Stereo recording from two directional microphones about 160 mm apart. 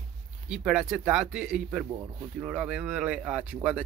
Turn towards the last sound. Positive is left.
turn(degrees=-5)  # may be behind; listen again after turning